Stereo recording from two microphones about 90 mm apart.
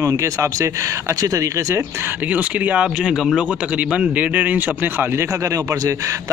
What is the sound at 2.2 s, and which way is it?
Speech, 15° right (ahead or behind).